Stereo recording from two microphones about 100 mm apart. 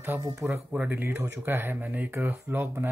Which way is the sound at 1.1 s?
25° right (ahead or behind).